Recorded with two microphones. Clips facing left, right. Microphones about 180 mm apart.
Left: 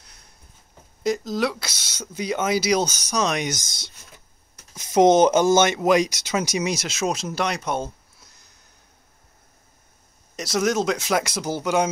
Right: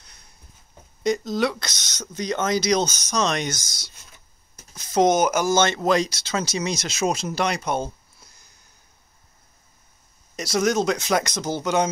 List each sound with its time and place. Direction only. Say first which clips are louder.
0.0 s a sound: left 1 dB; centre (ahead or behind)
1.0 s speech: right 1 dB; centre (ahead or behind)
6.8 s speech: right 1 dB; centre (ahead or behind)
10.3 s speech: right 1 dB; centre (ahead or behind)